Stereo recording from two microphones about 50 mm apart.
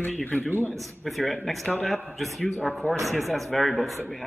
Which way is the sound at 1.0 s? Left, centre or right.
Centre.